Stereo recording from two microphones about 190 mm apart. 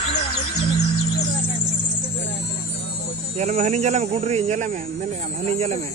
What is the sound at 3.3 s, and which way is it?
Speech, 35° right (ahead or behind).